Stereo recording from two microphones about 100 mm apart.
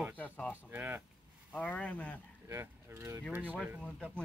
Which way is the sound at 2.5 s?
30° right (ahead or behind).